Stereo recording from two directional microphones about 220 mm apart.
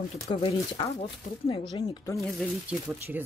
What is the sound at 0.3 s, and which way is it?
Speech, 20° left (ahead or behind).